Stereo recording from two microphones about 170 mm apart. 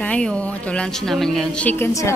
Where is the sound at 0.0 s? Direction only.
5° left (ahead or behind).